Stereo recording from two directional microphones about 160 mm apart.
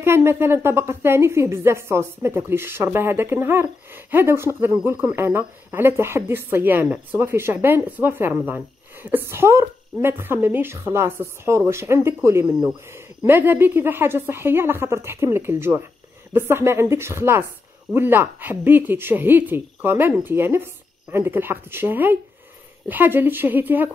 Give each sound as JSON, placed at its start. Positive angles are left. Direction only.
{"t": 0.0, "sound": "a woman's voice", "side_deg": -15}